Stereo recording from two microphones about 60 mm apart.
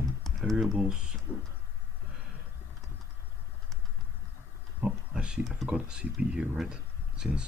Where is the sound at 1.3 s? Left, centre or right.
Right.